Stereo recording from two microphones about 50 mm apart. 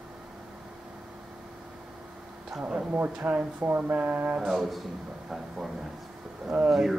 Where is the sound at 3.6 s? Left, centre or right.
Right.